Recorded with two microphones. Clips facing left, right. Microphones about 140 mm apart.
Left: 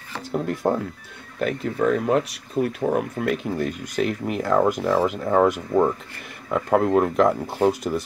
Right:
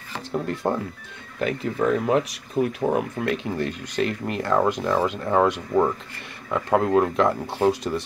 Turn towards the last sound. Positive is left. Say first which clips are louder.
# left 1 dB
turn(degrees=5)  # may be behind; listen again after turning